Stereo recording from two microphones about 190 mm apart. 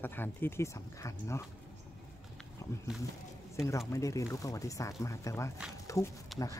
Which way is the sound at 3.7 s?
15° left (ahead or behind).